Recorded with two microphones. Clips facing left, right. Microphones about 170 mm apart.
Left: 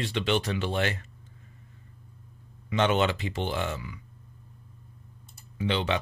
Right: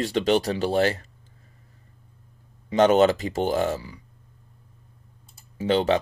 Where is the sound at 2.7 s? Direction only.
40° right (ahead or behind).